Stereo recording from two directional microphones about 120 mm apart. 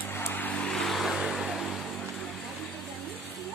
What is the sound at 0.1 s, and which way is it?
Vehicle, 15° left (ahead or behind).